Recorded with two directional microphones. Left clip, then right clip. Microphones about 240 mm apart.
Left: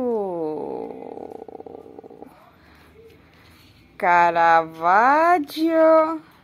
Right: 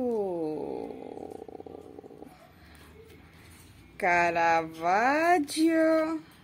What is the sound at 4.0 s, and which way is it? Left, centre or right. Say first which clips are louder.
Speech: left 8 dB; centre.